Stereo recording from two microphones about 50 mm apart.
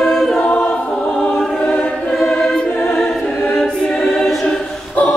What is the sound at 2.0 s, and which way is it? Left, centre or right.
Choir, centre.